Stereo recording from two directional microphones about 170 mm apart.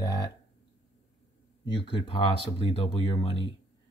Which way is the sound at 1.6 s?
30° left (ahead or behind).